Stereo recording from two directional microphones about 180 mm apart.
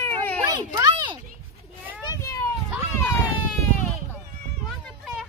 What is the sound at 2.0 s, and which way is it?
Children playing, 20° left (ahead or behind).